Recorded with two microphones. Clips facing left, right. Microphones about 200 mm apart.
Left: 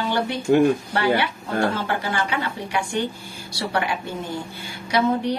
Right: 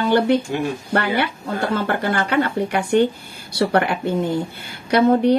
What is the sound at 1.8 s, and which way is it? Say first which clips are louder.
A woman's voice: right 4 dB; 55° right (ahead or behind).